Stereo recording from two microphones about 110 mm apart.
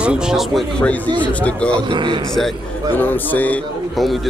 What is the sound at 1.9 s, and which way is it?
Speech, 50° right (ahead or behind).